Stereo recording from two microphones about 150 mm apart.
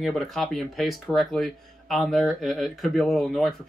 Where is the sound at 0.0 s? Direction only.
Centre (ahead or behind).